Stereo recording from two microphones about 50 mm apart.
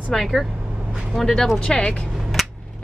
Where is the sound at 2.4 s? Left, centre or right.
Centre.